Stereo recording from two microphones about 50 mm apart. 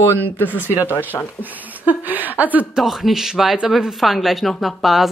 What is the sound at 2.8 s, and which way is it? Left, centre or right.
A man's voice, centre.